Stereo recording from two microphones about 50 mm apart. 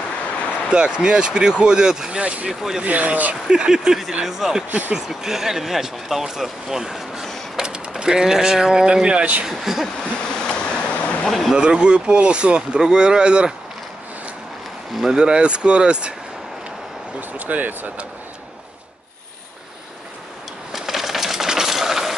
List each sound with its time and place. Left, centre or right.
0.4 s a sound: left
0.7 s speech: centre
3.4 s speech: centre
4.6 s speech: right
4.9 s speech: centre; by 9.4 s right
9.5 s speech: centre
10.5 s vehicle: left
11.2 s speech: centre
11.5 s speech: centre
15.0 s speech: centre
17.5 s speech: right
20.7 s a sound: centre